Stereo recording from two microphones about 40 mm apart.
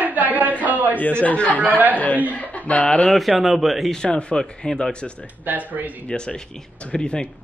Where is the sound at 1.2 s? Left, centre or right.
Left.